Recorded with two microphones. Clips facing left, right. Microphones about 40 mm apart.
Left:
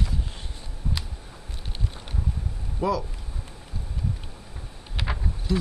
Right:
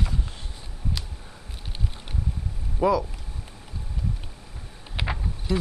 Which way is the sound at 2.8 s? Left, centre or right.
Centre.